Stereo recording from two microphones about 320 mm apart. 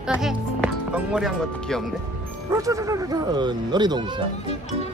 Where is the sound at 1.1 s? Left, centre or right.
Centre.